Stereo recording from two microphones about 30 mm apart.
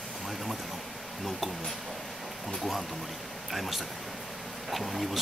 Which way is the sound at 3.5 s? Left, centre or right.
Centre.